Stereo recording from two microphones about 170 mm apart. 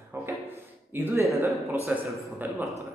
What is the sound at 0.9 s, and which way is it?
Speech, 15° right (ahead or behind).